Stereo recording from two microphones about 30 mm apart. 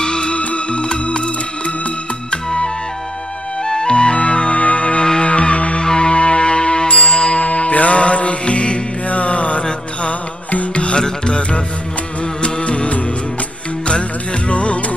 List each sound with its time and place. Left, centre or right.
0.0 s music: left
0.3 s music: left
2.3 s flute: left
3.6 s music: left
5.8 s music: left
7.3 s mantra: left
10.7 s music: left
14.5 s music: left